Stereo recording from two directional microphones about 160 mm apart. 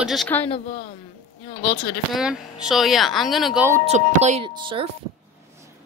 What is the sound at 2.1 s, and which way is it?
Speech, 5° right (ahead or behind).